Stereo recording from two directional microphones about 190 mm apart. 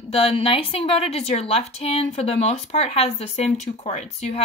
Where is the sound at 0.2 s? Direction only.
30° left (ahead or behind).